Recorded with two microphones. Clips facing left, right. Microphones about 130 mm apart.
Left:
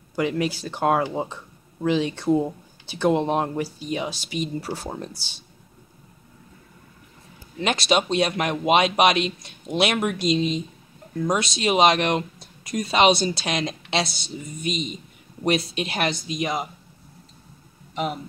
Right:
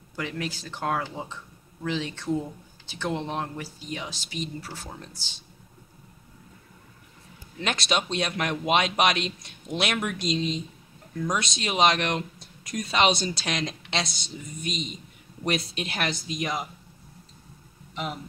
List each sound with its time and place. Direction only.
0.2 s speech: 15° left (ahead or behind)
1.1 s a sound: 40° left (ahead or behind)
1.9 s speech: 15° left (ahead or behind)
4.6 s speech: 35° left (ahead or behind)
7.6 s speech: 5° left (ahead or behind)